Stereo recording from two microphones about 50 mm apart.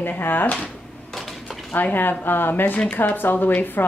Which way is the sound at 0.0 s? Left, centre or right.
Left.